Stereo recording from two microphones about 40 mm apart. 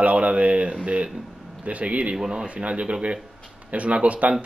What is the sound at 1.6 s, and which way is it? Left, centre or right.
Speech, right.